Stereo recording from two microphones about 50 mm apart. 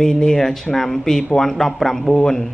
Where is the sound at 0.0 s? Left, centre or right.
Centre.